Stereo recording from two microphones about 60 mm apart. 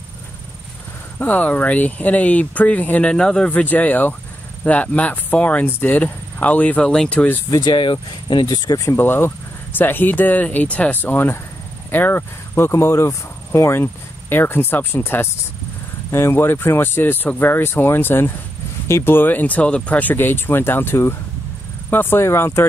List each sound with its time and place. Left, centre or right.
1.2 s speech: left
3.1 s speech: centre
3.4 s speech: left
6.8 s speech: centre
8.9 s speech: left